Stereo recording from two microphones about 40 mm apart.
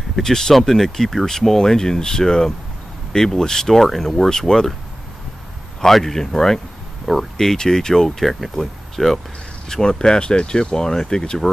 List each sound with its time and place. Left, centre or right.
0.1 s speech: centre
5.8 s speech: centre
8.1 s speech: centre
9.7 s speech: centre